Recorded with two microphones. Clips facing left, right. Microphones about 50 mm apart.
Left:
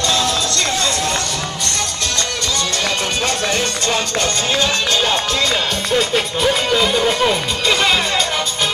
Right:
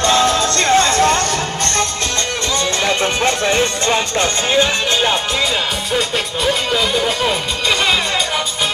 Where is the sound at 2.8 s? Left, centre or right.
Right.